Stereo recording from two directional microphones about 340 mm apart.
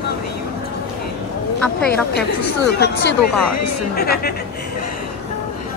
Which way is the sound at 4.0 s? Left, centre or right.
Left.